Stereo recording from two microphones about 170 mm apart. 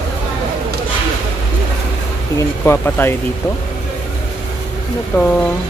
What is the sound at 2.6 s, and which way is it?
Speech, 15° left (ahead or behind).